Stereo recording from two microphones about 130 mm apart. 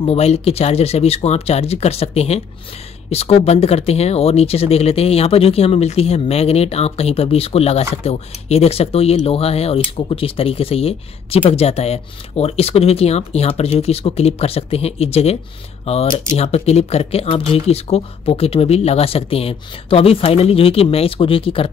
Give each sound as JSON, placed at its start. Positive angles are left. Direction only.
{"t": 0.0, "sound": "speech", "side_deg": 50}